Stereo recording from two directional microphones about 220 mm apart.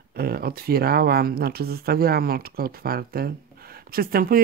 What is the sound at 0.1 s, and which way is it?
Speech, 45° right (ahead or behind).